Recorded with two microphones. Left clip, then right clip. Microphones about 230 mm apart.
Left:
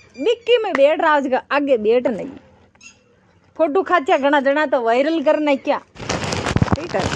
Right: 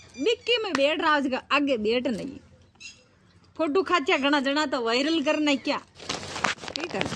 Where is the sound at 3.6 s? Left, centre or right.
Centre.